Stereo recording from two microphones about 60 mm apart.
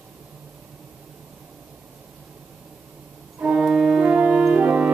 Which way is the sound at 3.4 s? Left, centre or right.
Centre.